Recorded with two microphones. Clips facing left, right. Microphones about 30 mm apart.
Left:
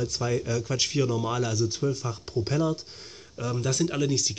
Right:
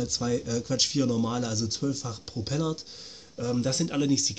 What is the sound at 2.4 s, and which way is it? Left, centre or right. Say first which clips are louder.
Speech: left 4 dB; left.